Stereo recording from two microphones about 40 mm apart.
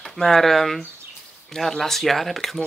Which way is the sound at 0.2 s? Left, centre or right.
Centre.